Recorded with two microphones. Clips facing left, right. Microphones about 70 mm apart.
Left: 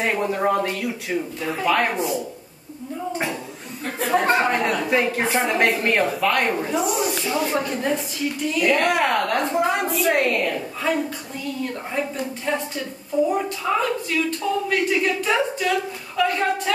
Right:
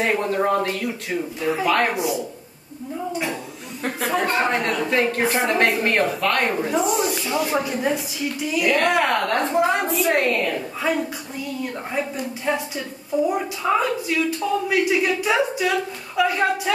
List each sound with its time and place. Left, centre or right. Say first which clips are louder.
0.0 s speech: right 1 dB; centre
4.4 s speech: left 1 dB; centre